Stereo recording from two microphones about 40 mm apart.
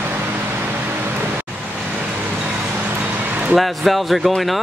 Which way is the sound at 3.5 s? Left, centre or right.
Centre.